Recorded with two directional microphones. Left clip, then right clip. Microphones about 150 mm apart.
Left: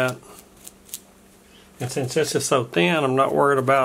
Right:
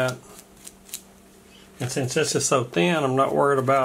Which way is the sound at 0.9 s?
5° left (ahead or behind).